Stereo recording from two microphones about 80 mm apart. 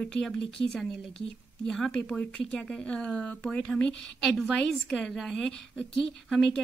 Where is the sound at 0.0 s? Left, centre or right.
Centre.